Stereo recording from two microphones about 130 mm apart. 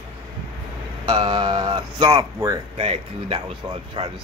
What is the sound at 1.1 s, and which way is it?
Speech, 30° right (ahead or behind).